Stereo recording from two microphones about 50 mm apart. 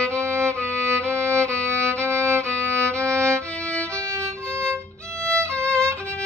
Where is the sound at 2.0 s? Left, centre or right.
Right.